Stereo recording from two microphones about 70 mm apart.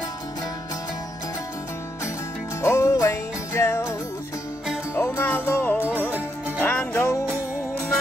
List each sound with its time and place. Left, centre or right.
2.6 s music: left
4.9 s music: left
5.8 s music: right
6.6 s music: left